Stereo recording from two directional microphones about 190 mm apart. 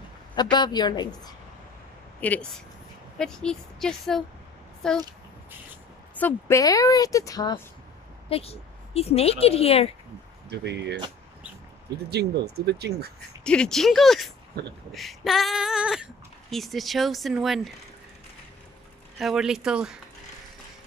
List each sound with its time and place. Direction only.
0.4 s a woman's voice: 20° left (ahead or behind)
2.1 s a woman's voice: 10° left (ahead or behind)
6.1 s a woman's voice: 10° left (ahead or behind)
8.3 s speech: 30° left (ahead or behind)
10.5 s speech: 60° right (ahead or behind)
12.1 s speech: 60° right (ahead or behind)
13.4 s speech: 5° left (ahead or behind)
19.1 s speech: centre (ahead or behind)